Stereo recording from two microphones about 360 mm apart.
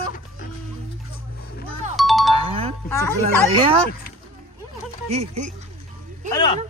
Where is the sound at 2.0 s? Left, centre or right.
Centre.